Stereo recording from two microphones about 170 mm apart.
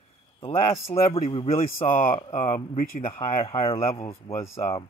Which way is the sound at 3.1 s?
30° left (ahead or behind).